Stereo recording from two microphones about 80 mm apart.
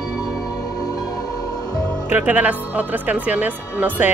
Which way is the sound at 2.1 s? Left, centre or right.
Centre.